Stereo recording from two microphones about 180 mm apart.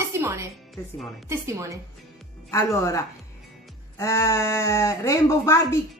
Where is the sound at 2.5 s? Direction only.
15° left (ahead or behind).